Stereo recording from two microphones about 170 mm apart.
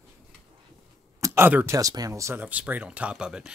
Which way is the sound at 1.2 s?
15° right (ahead or behind).